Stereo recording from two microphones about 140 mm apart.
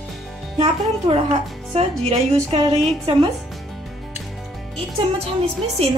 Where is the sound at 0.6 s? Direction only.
40° right (ahead or behind).